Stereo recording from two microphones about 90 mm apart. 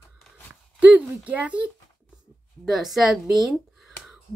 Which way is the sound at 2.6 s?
Centre (ahead or behind).